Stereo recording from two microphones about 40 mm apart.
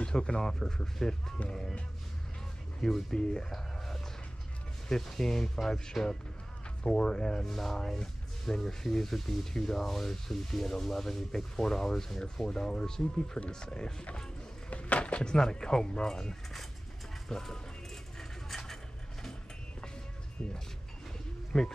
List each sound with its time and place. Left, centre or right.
0.0 s speech: left
3.5 s a sound: centre
4.8 s speech: centre
14.7 s a sound: left
15.2 s speech: centre
18.1 s vehicle: centre
21.5 s speech: centre